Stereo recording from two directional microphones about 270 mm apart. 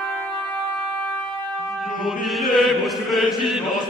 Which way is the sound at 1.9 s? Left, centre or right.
Centre.